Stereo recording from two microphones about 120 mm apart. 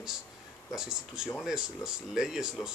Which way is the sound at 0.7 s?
5° right (ahead or behind).